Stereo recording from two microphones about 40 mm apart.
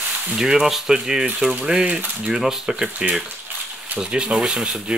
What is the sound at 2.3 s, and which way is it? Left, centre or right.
Speech, centre.